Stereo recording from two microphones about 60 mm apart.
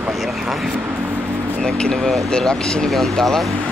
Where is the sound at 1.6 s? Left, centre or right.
Centre.